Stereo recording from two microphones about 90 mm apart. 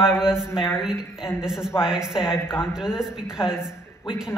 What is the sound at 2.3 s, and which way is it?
Speech, 25° left (ahead or behind).